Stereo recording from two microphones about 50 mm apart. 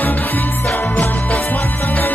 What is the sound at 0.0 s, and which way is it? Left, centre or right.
Music, left.